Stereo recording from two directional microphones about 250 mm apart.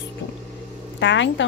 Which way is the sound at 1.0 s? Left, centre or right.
Left.